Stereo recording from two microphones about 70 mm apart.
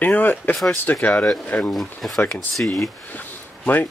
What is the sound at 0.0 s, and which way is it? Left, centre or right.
Speech, left.